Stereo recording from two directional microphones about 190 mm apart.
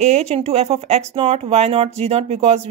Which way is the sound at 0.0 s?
35° right (ahead or behind).